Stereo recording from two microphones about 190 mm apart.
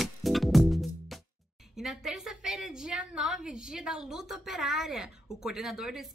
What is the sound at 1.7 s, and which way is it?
Speech, centre (ahead or behind).